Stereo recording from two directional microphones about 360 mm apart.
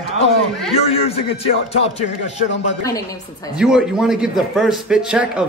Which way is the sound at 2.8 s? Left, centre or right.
Centre.